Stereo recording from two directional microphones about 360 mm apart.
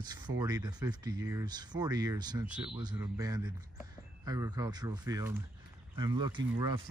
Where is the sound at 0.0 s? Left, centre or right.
Centre.